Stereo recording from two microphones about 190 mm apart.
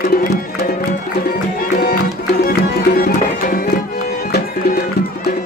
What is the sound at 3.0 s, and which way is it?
Music, 50° left (ahead or behind).